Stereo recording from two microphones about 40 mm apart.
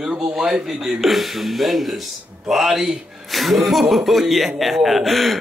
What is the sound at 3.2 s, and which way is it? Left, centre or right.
A man's voice, centre.